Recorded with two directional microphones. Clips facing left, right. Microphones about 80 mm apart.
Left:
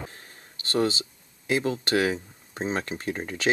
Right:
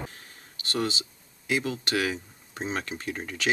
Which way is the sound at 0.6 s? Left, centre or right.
Left.